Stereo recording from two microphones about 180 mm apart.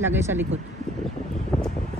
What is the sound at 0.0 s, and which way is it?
Speech, 15° right (ahead or behind).